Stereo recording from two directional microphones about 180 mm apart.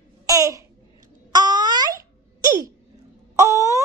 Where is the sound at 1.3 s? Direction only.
25° right (ahead or behind).